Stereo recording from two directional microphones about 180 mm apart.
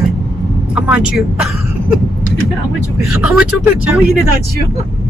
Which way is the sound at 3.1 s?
5° right (ahead or behind).